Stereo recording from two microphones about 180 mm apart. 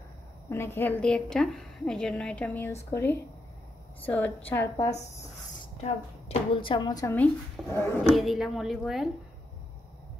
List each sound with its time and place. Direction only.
0.5 s a woman's voice: 15° left (ahead or behind)
5.8 s speech: 35° left (ahead or behind)
7.2 s speech: 5° left (ahead or behind)